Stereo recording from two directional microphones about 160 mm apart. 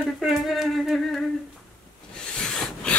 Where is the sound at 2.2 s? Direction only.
5° left (ahead or behind).